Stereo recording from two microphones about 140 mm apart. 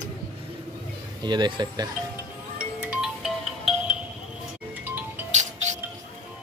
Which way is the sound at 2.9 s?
5° right (ahead or behind).